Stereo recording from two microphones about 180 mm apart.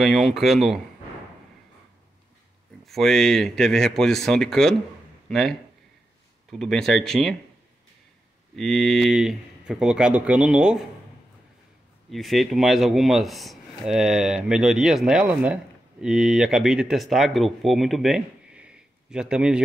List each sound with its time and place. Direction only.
0.0 s speech: centre (ahead or behind)
2.8 s speech: centre (ahead or behind)
6.6 s speech: centre (ahead or behind)
8.5 s speech: centre (ahead or behind)
12.1 s speech: centre (ahead or behind)